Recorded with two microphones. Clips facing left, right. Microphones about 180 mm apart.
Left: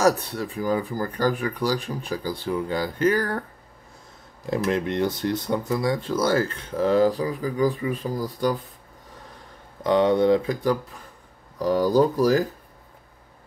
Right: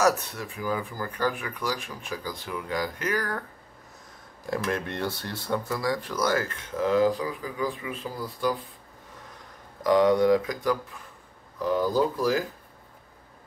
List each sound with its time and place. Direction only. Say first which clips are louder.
0.0 s speech: left 3 dB; 35° left (ahead or behind)
4.5 s speech: left 5 dB; 20° left (ahead or behind); by 8.5 s 40° left (ahead or behind)
9.8 s speech: left 1 dB; 25° left (ahead or behind)